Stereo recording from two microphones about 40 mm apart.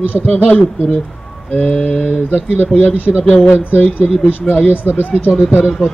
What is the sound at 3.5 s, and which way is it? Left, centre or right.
Speech, left.